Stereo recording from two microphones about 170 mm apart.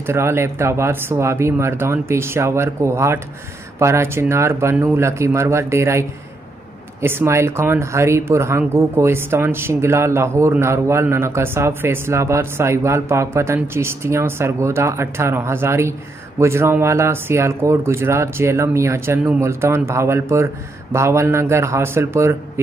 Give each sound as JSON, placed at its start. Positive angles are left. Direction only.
{"t": 0.0, "sound": "speech", "side_deg": -15}